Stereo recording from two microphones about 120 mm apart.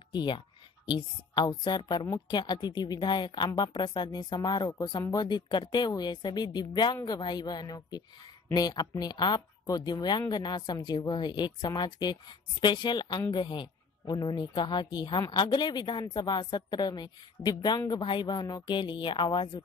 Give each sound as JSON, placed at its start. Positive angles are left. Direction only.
{"t": 0.1, "sound": "speech", "side_deg": 40}